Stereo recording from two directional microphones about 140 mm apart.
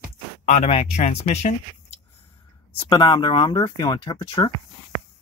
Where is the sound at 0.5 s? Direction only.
50° left (ahead or behind).